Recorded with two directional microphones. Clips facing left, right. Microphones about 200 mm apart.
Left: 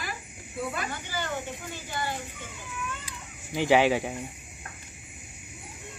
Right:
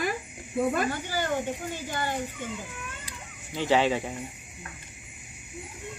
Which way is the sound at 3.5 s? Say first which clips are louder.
Left 2 dB; 10° left (ahead or behind).